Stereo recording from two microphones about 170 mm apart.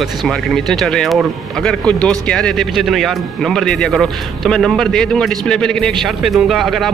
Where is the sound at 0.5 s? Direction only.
Centre (ahead or behind).